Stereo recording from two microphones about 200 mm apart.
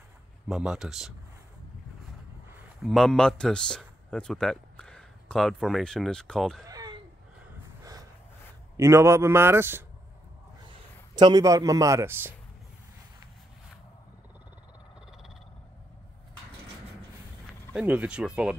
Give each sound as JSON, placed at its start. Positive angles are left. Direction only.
{"t": 0.5, "sound": "speech", "side_deg": 0}
{"t": 2.5, "sound": "a man's voice", "side_deg": 0}
{"t": 6.6, "sound": "a sound", "side_deg": -20}
{"t": 8.7, "sound": "speech", "side_deg": -15}
{"t": 11.1, "sound": "speech", "side_deg": -20}
{"t": 15.0, "sound": "frog", "side_deg": -5}
{"t": 17.7, "sound": "speech", "side_deg": -5}